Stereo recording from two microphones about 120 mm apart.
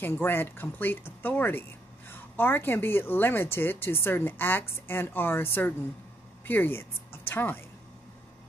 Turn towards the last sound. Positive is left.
turn(degrees=20)  # may be behind; listen again after turning